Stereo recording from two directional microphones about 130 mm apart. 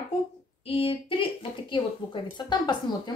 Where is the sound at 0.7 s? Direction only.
45° left (ahead or behind).